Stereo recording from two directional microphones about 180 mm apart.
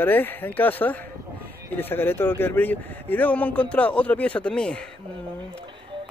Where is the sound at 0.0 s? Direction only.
10° left (ahead or behind).